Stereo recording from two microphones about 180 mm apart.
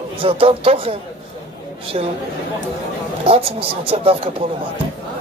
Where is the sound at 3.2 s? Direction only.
30° right (ahead or behind).